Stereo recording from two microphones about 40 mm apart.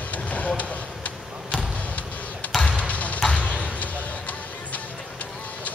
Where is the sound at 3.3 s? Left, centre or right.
Left.